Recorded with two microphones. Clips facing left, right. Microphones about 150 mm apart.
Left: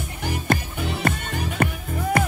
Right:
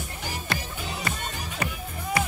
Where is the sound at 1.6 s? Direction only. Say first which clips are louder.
Left 7 dB; 50° left (ahead or behind).